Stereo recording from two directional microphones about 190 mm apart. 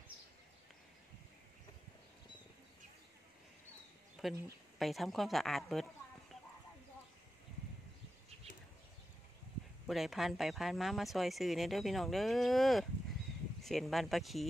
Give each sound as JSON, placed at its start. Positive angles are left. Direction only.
{"t": 4.2, "sound": "speech", "side_deg": -5}
{"t": 9.8, "sound": "speech", "side_deg": 0}